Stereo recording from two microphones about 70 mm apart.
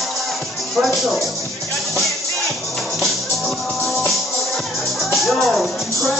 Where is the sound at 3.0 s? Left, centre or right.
Centre.